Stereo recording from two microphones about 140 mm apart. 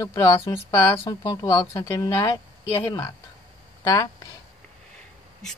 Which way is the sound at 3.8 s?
25° left (ahead or behind).